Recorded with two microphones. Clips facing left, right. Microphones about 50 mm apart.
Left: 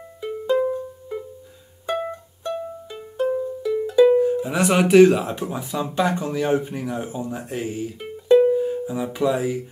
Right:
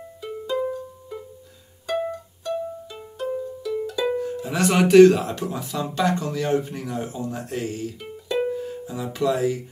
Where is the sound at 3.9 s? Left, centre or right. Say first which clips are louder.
Left 13 dB; left.